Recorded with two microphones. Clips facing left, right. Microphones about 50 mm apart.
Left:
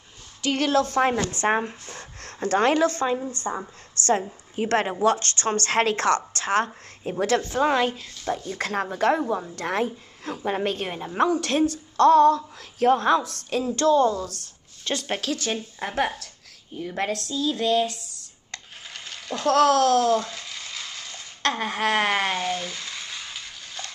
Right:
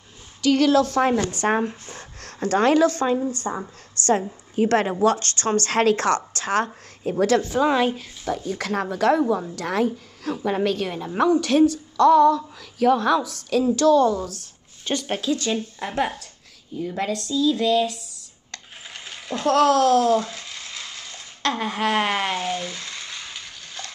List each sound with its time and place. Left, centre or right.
0.4 s a woman's voice: left
3.4 s a woman's voice: centre
3.9 s a sound: left
4.6 s a woman's voice: left
7.6 s a woman's voice: left
8.5 s a woman's voice: left
11.4 s a woman's voice: left
14.9 s a woman's voice: left
18.9 s coin: centre
19.7 s a woman's voice: left
20.2 s a sound: centre
21.4 s a woman's voice: left
22.3 s frying: centre